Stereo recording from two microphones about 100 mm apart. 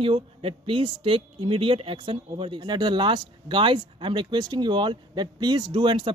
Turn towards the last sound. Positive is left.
turn(degrees=-55)  # may be behind; listen again after turning